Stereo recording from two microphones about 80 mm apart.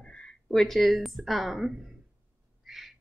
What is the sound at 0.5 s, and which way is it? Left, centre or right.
A woman's voice, centre.